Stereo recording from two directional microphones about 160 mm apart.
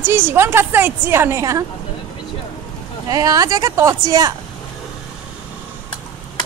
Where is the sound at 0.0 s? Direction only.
15° right (ahead or behind).